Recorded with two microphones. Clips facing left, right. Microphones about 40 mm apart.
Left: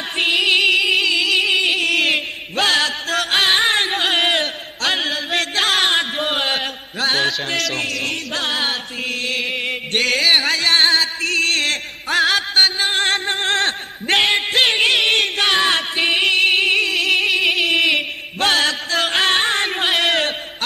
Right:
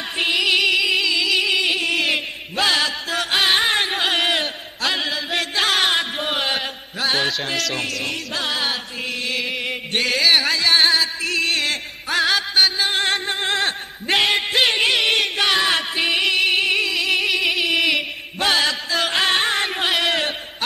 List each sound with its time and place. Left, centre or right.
0.2 s a sound: centre
1.8 s mantra: left
3.3 s music: centre
5.3 s a sound: centre
7.1 s music: centre
8.5 s music: centre
13.4 s music: centre
18.5 s music: centre